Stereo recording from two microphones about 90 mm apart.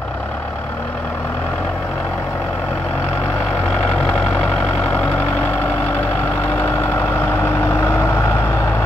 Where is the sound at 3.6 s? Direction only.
5° left (ahead or behind).